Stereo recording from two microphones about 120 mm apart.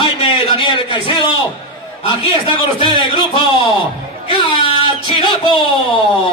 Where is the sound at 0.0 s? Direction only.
50° left (ahead or behind).